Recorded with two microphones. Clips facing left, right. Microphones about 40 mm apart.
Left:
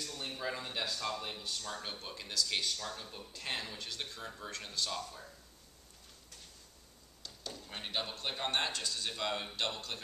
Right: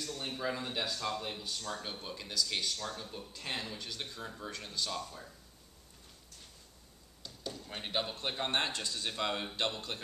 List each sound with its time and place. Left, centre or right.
0.4 s speech: centre
7.2 s a sound: centre
8.2 s speech: centre